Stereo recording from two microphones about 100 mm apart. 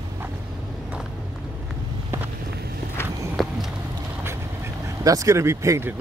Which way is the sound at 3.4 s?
Centre (ahead or behind).